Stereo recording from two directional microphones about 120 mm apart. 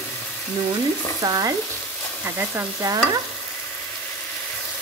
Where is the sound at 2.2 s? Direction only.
15° right (ahead or behind).